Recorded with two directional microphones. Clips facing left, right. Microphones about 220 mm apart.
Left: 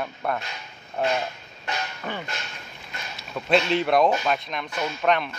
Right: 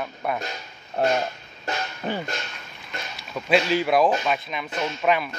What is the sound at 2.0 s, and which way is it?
Speech, 35° right (ahead or behind).